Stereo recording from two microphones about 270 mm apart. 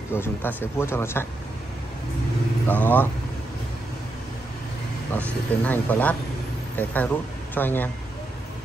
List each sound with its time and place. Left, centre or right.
0.1 s speech: centre
2.7 s speech: centre
5.1 s speech: centre